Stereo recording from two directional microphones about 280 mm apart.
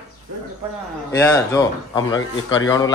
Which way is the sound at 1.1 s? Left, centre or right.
Centre.